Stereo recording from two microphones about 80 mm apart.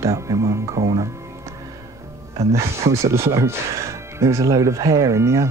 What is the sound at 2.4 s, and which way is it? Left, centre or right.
Speech, right.